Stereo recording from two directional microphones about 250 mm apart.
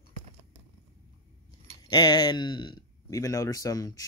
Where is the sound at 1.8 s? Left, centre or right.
Centre.